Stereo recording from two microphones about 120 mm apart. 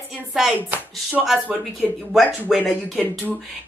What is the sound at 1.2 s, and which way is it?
A woman's voice, centre (ahead or behind).